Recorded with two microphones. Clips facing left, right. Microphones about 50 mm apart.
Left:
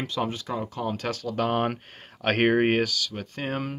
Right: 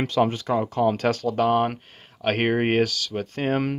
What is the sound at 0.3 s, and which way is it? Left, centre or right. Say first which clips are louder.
Speech: right 7 dB; right.